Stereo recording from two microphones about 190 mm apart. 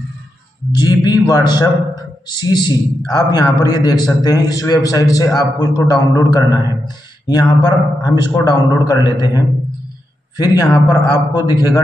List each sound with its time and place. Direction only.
0.7 s a man's voice: 20° left (ahead or behind)